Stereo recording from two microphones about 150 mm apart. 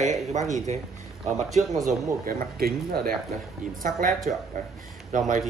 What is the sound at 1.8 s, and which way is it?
Speech, 70° right (ahead or behind).